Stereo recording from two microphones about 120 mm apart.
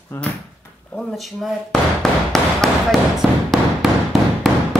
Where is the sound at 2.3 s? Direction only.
Centre (ahead or behind).